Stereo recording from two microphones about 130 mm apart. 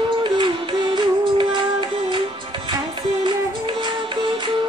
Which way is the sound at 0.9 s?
40° right (ahead or behind).